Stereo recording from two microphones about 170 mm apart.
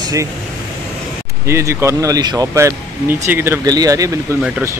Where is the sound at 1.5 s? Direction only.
15° right (ahead or behind).